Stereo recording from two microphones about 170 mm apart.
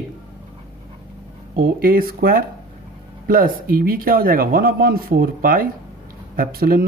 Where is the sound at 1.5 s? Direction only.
60° right (ahead or behind).